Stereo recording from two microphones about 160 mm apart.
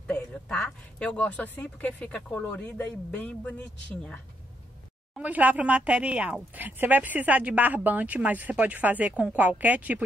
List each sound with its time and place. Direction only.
0.0 s speech: 5° left (ahead or behind)
5.1 s speech: 10° right (ahead or behind)